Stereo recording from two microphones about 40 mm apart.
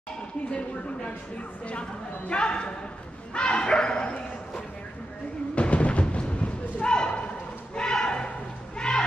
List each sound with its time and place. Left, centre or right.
0.5 s speech: left
5.5 s thump: left
7.7 s a sound: centre
8.7 s music: left